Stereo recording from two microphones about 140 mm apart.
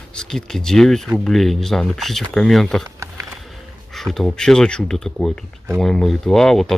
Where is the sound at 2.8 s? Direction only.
20° right (ahead or behind).